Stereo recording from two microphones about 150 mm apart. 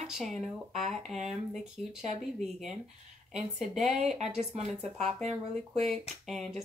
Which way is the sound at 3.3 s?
50° right (ahead or behind).